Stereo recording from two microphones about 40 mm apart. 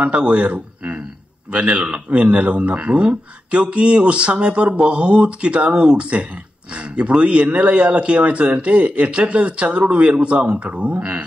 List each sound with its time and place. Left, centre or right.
0.0 s a man's voice: right